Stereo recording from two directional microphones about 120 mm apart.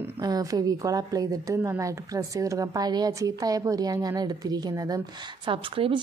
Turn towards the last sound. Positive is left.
turn(degrees=-45)  # may be behind; listen again after turning